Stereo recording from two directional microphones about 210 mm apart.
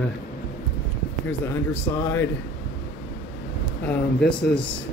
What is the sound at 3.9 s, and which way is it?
Speech, 5° left (ahead or behind).